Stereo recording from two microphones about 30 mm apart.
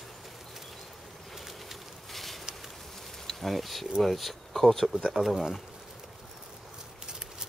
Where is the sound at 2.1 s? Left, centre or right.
Centre.